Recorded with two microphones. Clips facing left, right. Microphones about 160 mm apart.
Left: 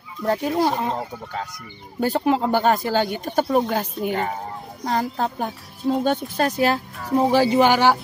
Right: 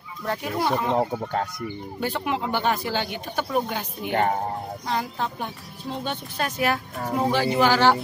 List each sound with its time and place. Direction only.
0.2 s speech: 35° left (ahead or behind)
0.9 s speech: 60° right (ahead or behind)
2.0 s speech: 40° left (ahead or behind)
7.5 s speech: 15° left (ahead or behind)